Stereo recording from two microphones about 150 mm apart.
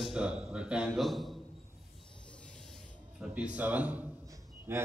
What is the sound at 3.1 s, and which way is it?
A man's voice, 5° right (ahead or behind).